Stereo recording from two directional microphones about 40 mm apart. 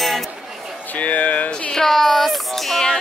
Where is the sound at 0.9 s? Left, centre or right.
Left.